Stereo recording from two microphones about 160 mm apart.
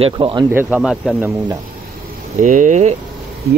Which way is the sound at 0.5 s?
10° right (ahead or behind).